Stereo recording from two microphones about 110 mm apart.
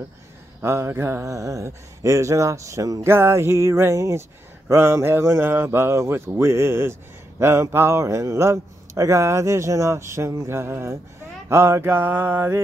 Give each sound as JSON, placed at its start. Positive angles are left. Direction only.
{"t": 0.6, "sound": "speech", "side_deg": -25}